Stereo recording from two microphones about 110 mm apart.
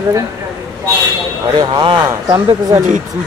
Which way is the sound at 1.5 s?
40° right (ahead or behind).